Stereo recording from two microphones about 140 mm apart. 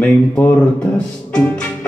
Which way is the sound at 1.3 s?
10° left (ahead or behind).